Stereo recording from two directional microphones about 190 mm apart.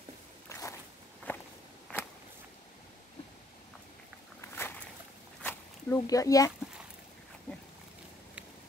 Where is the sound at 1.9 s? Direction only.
5° left (ahead or behind).